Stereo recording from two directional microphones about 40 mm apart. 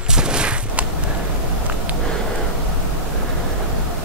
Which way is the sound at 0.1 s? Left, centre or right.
Right.